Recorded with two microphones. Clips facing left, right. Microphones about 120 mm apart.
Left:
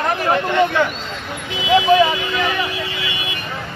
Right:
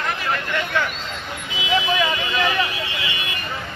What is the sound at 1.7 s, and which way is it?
Speech, 25° left (ahead or behind).